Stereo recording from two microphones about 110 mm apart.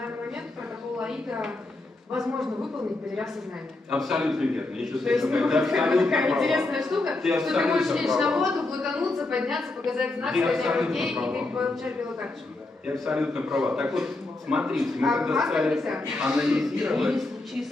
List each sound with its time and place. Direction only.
1.0 s a woman's voice: 5° right (ahead or behind)
3.9 s a man's voice: 5° right (ahead or behind)
12.9 s a man's voice: 5° right (ahead or behind)